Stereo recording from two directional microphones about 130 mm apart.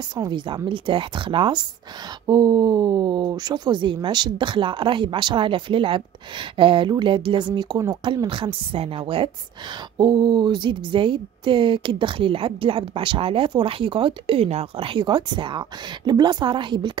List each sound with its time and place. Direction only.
0.1 s speech: 35° right (ahead or behind)